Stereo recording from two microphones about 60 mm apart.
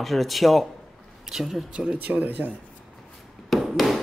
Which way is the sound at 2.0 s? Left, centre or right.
Right.